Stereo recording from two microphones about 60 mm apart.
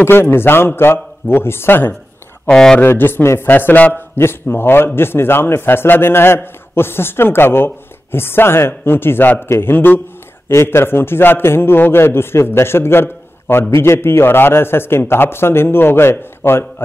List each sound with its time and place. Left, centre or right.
0.0 s a man's voice: left
2.4 s speech: centre
2.8 s a man's voice: left
4.2 s a man's voice: left
10.5 s a man's voice: left